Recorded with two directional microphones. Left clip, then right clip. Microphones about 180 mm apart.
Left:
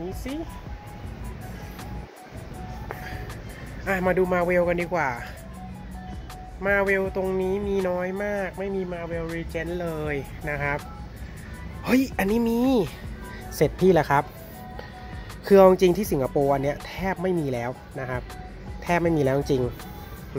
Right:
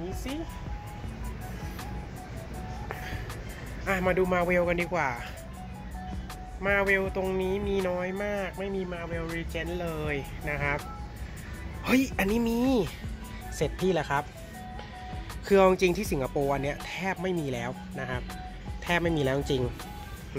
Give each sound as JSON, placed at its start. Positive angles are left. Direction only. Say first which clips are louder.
{"t": 2.9, "sound": "music", "louder": "left 2 dB", "side_deg": 15}
{"t": 3.8, "sound": "speech", "louder": "left 3 dB", "side_deg": 25}
{"t": 6.6, "sound": "speech", "louder": "left 3 dB", "side_deg": 25}
{"t": 11.8, "sound": "speech", "louder": "left 3 dB", "side_deg": 30}
{"t": 13.8, "sound": "speech", "louder": "left 8 dB", "side_deg": 40}
{"t": 15.4, "sound": "speech", "louder": "left 6 dB", "side_deg": 25}